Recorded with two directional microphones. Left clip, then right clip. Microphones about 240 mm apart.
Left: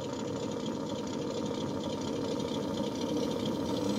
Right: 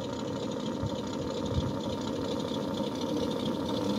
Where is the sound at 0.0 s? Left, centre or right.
Centre.